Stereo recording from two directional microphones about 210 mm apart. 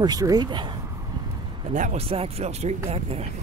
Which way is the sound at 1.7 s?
35° right (ahead or behind).